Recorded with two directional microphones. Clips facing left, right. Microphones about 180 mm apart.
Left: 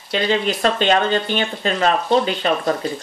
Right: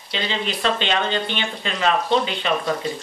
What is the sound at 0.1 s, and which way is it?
Speech, 45° left (ahead or behind).